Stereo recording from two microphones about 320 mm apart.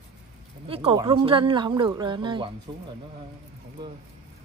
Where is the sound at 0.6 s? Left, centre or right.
Centre.